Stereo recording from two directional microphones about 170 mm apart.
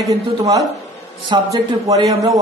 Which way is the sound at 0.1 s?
20° right (ahead or behind).